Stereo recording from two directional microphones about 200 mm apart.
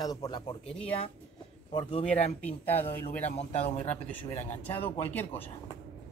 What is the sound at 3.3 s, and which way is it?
Speech, 30° left (ahead or behind).